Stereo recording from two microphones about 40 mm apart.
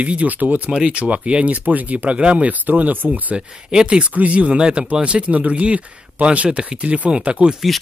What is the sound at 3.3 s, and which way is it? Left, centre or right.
Speech, right.